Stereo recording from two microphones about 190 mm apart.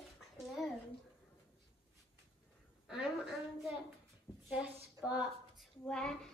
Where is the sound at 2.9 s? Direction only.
5° right (ahead or behind).